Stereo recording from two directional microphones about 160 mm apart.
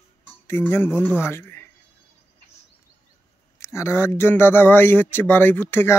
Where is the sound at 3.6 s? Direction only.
15° left (ahead or behind).